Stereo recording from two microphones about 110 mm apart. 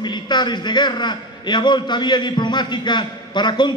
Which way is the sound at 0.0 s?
40° left (ahead or behind).